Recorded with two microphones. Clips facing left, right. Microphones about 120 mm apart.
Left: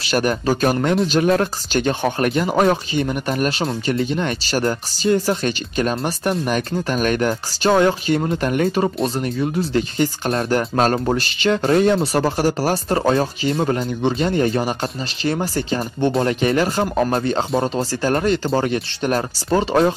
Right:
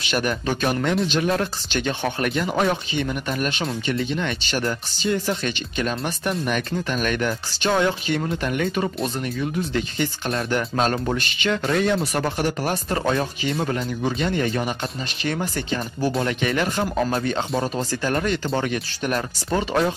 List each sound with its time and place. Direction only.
0.0 s speech: 40° left (ahead or behind)
16.8 s speech: 20° left (ahead or behind)
17.1 s speech: 35° left (ahead or behind)